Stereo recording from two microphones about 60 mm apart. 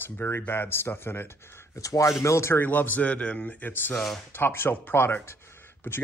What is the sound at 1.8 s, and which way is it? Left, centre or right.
Speech, left.